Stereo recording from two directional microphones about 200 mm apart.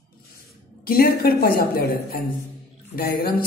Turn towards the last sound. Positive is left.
turn(degrees=50)  # may be behind; listen again after turning